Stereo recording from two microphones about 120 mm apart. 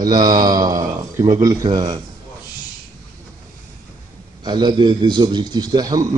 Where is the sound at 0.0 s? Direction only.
35° right (ahead or behind).